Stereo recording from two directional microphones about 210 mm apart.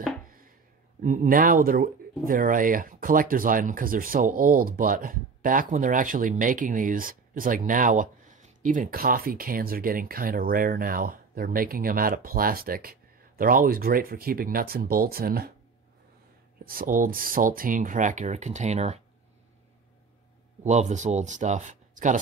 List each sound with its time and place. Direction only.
1.0 s speech: 40° right (ahead or behind)
16.6 s speech: 40° right (ahead or behind)
20.6 s speech: 35° right (ahead or behind)